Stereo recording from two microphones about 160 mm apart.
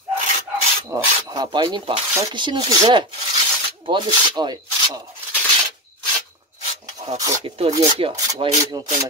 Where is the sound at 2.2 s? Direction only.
30° right (ahead or behind).